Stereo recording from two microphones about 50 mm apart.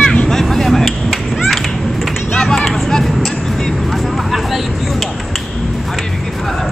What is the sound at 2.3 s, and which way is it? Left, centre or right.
Vehicle, centre.